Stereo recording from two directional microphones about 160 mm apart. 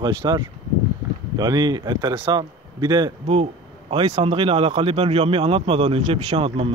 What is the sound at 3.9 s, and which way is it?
Speech, 40° right (ahead or behind).